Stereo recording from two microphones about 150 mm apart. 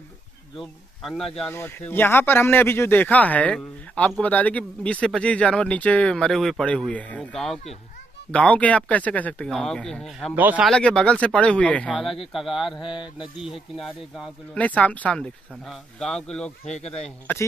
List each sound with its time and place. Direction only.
0.6 s speech: centre (ahead or behind)
1.5 s speech: 15° left (ahead or behind)
10.3 s a man's voice: 10° right (ahead or behind)
10.7 s speech: 5° left (ahead or behind)
12.8 s a sound: 35° left (ahead or behind)
13.4 s speech: centre (ahead or behind)